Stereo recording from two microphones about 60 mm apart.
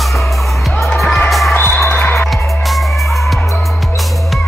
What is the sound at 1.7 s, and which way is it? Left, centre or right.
Music, left.